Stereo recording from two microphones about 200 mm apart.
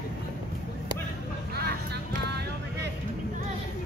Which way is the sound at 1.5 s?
50° right (ahead or behind).